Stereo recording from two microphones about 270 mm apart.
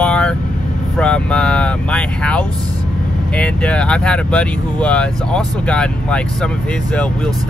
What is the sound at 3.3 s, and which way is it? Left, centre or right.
Speech, centre.